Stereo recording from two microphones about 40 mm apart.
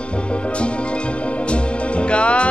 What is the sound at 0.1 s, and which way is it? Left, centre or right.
Music, left.